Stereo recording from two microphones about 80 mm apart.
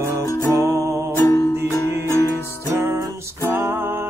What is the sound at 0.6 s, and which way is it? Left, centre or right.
Music, right.